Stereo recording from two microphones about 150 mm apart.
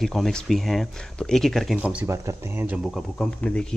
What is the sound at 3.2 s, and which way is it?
Speech, 5° left (ahead or behind).